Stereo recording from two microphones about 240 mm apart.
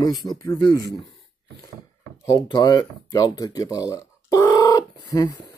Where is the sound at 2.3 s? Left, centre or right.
Centre.